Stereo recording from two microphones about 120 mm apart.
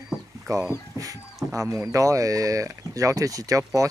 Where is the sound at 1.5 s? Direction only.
25° right (ahead or behind).